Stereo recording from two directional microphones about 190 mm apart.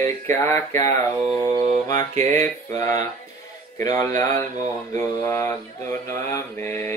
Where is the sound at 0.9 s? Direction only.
35° right (ahead or behind).